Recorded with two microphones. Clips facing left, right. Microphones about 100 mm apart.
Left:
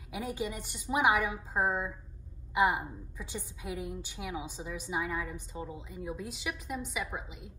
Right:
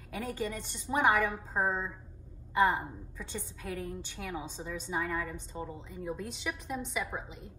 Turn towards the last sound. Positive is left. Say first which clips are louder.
# right 1 dB
turn(degrees=5)  # may be behind; listen again after turning